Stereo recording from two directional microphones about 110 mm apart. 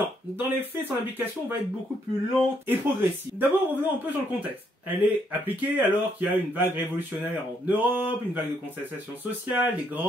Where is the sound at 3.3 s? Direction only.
20° right (ahead or behind).